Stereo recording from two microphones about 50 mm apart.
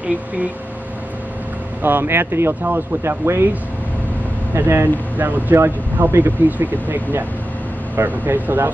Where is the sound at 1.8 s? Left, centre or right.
Right.